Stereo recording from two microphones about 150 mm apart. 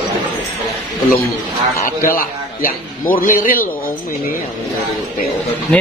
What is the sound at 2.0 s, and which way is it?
A man's voice, 70° left (ahead or behind).